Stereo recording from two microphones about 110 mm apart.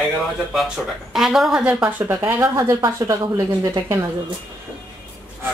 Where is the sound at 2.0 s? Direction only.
25° right (ahead or behind).